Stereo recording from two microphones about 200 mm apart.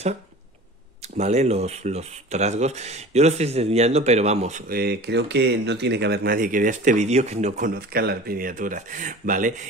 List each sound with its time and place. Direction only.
1.1 s speech: 35° right (ahead or behind)
7.9 s speech: 50° right (ahead or behind)